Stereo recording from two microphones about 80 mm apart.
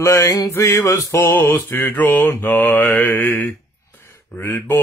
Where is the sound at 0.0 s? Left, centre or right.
Left.